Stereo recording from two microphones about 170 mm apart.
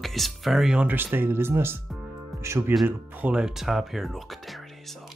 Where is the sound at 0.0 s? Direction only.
Centre (ahead or behind); by 2.7 s 15° right (ahead or behind).